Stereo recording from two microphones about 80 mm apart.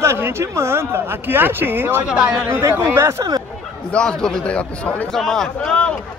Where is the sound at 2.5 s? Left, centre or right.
Right.